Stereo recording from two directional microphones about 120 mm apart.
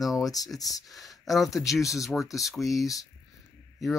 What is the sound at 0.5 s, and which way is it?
Speech, 30° left (ahead or behind).